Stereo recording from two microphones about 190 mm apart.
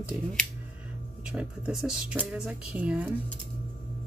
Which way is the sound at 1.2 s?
5° right (ahead or behind).